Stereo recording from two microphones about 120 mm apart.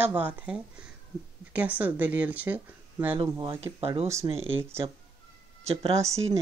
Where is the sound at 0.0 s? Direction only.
15° right (ahead or behind).